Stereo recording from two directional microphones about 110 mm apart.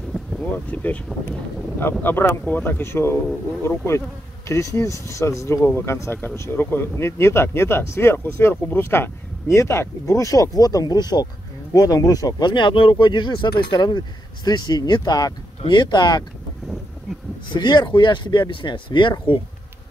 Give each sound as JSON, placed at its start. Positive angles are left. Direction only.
{"t": 0.7, "sound": "speech", "side_deg": 15}
{"t": 17.5, "sound": "speech", "side_deg": 40}